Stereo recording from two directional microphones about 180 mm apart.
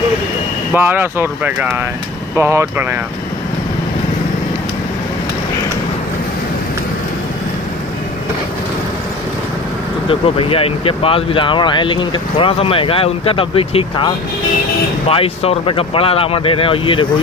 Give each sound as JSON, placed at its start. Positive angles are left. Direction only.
{"t": 0.7, "sound": "speech", "side_deg": -10}
{"t": 10.0, "sound": "speech", "side_deg": 30}